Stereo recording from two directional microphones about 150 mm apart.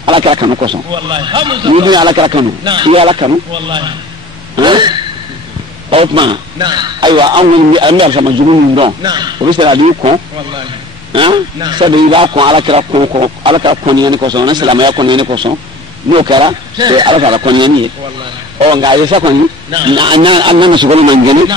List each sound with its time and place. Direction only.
0.0 s a man's voice: 35° right (ahead or behind)
4.6 s a sound: 30° right (ahead or behind)
5.9 s a man's voice: 35° right (ahead or behind)
11.1 s a man's voice: 30° right (ahead or behind)